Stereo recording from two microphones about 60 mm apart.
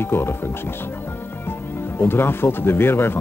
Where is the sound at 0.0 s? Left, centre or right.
Left.